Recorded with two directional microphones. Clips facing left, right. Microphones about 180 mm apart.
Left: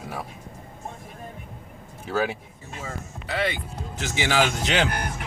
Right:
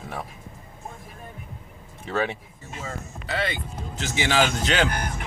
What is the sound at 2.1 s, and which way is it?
Speech, 5° left (ahead or behind).